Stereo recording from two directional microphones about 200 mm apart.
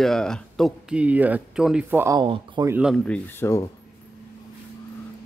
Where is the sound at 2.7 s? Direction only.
Centre (ahead or behind).